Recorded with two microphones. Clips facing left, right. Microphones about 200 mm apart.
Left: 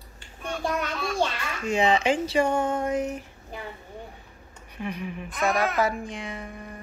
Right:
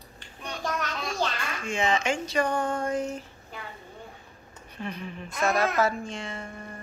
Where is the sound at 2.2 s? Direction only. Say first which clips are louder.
Left 3 dB; 25° left (ahead or behind).